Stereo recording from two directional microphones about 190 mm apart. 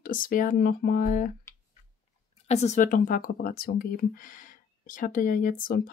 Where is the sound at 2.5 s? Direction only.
35° left (ahead or behind).